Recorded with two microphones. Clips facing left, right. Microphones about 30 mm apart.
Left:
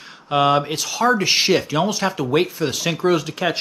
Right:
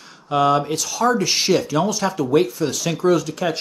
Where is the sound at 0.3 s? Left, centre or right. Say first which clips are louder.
Even; left.